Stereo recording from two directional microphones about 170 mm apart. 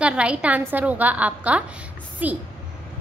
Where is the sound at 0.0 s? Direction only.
5° right (ahead or behind).